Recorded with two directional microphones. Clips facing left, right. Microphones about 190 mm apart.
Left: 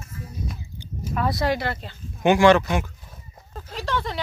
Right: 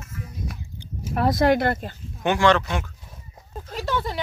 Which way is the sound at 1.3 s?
50° right (ahead or behind).